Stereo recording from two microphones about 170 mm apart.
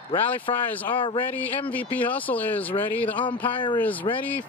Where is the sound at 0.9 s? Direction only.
30° left (ahead or behind).